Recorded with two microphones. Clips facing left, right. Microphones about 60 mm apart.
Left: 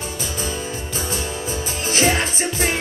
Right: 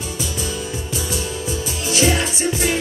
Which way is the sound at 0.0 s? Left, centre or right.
Left.